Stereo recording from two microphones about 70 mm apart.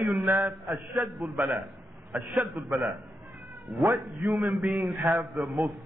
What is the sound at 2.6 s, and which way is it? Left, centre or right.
Speech, right.